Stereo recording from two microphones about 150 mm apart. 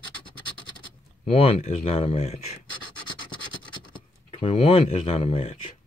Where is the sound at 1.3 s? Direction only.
45° left (ahead or behind).